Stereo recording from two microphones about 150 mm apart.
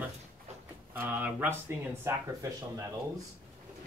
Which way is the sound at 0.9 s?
10° right (ahead or behind).